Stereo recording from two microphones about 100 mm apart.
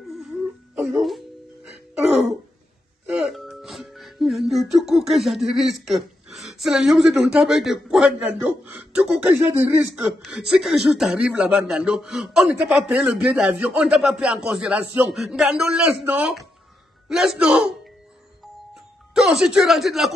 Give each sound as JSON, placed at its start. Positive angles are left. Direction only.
{"t": 0.1, "sound": "whimper", "side_deg": 0}
{"t": 0.9, "sound": "speech", "side_deg": 0}
{"t": 3.2, "sound": "music", "side_deg": 0}
{"t": 8.2, "sound": "speech", "side_deg": -20}
{"t": 10.2, "sound": "a man's voice", "side_deg": -5}
{"t": 19.1, "sound": "speech", "side_deg": -5}